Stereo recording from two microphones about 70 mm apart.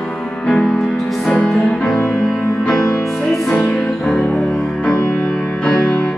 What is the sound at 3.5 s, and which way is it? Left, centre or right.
Music, centre.